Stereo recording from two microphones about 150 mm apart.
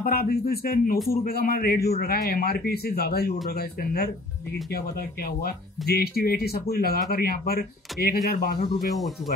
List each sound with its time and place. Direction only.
0.0 s speech: 85° left
5.4 s speech: 90° left